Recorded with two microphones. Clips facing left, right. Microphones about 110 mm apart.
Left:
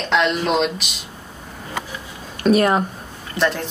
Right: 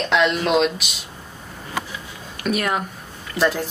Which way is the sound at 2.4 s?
35° left (ahead or behind).